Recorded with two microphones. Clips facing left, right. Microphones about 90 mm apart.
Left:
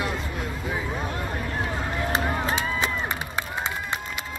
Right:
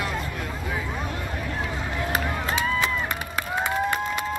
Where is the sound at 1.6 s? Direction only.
30° left (ahead or behind).